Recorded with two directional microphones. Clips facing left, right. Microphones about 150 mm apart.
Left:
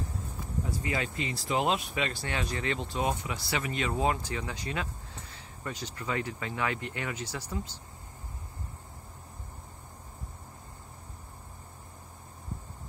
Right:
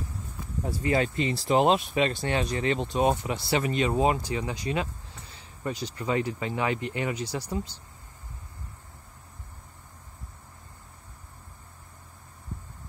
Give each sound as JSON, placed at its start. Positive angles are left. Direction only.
{"t": 0.7, "sound": "speech", "side_deg": -35}
{"t": 3.0, "sound": "speech", "side_deg": -30}